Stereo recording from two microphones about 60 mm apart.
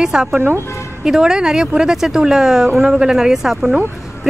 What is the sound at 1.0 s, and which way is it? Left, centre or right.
Speech, centre.